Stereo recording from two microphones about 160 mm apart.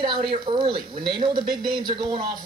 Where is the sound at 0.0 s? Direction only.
30° right (ahead or behind).